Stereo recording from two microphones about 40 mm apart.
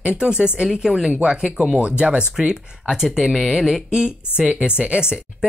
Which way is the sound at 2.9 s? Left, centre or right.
Centre.